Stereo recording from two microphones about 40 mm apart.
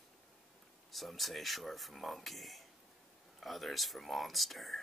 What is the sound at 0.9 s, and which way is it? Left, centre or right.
Speech, centre.